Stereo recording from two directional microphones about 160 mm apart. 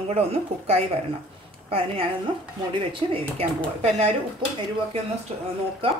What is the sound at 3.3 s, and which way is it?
Speech, 40° right (ahead or behind).